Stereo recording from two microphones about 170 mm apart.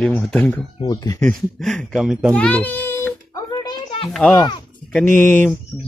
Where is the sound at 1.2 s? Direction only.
5° left (ahead or behind); by 4.1 s 25° left (ahead or behind).